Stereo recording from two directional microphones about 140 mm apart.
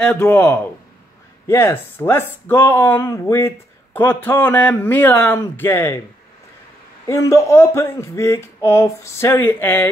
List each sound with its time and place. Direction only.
0.0 s speech: 15° left (ahead or behind)
7.1 s speech: 20° left (ahead or behind)